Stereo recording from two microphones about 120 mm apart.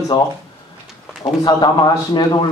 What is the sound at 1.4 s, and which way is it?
Speech, 35° left (ahead or behind).